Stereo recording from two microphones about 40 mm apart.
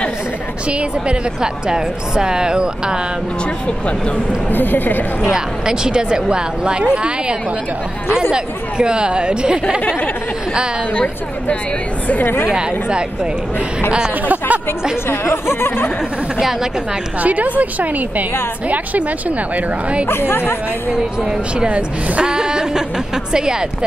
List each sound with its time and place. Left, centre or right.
0.7 s speech: right
1.4 s speech: centre
4.5 s a woman's voice: left
5.3 s speech: centre
12.2 s a woman's voice: left
12.4 s speech: centre
14.2 s speech: right
15.0 s speech: left
17.2 s a woman's voice: right
20.1 s speech: left
21.6 s a woman's voice: right
22.2 s speech: centre